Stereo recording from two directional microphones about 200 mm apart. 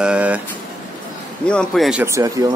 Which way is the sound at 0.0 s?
5° right (ahead or behind).